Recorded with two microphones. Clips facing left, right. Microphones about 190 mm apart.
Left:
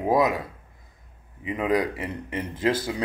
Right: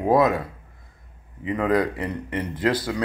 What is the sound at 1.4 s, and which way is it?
Speech, 15° left (ahead or behind).